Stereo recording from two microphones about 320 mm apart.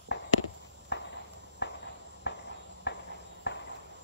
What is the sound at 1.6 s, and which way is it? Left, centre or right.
Walk, left.